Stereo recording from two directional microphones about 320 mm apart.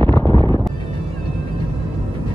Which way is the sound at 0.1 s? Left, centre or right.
Centre.